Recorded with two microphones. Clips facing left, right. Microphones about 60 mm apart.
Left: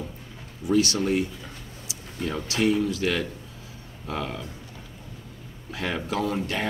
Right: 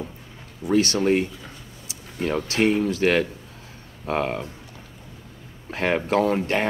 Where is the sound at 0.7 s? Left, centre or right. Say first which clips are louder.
Right 3 dB; right.